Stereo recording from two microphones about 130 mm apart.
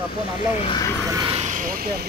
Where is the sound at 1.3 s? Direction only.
70° right (ahead or behind); by 1.9 s 90° right.